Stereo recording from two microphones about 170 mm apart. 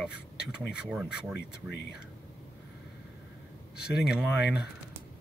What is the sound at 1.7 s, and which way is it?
Speech, 80° left.